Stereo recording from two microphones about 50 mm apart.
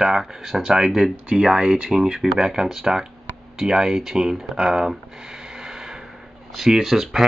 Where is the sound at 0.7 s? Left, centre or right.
Centre.